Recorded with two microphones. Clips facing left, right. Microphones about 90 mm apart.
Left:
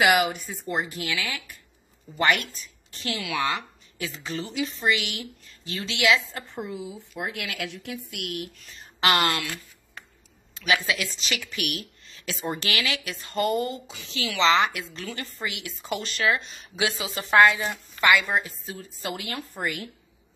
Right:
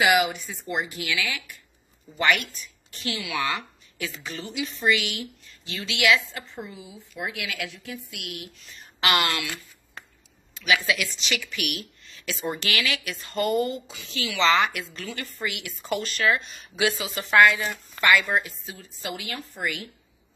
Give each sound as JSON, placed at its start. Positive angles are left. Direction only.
{"t": 0.1, "sound": "speech", "side_deg": 45}
{"t": 6.3, "sound": "a woman's voice", "side_deg": 60}
{"t": 9.0, "sound": "speech", "side_deg": 40}
{"t": 10.5, "sound": "speech", "side_deg": 30}
{"t": 18.4, "sound": "speech", "side_deg": 40}
{"t": 19.3, "sound": "speech", "side_deg": 50}